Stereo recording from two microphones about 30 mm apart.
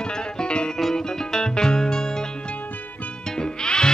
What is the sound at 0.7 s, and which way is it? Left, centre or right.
Music, centre.